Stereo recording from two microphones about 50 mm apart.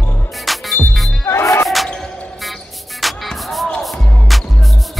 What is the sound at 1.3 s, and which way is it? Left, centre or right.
Music, left.